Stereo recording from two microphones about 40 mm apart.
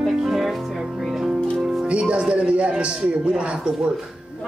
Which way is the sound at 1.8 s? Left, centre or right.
Right.